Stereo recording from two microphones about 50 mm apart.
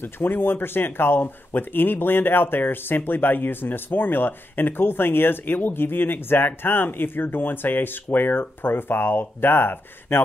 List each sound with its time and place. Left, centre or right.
0.0 s speech: left